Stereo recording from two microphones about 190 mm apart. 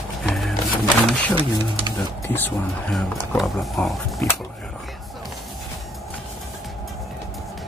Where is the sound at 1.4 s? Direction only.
25° right (ahead or behind).